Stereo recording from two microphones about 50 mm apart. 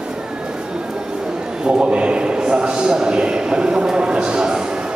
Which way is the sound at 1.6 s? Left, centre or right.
Centre.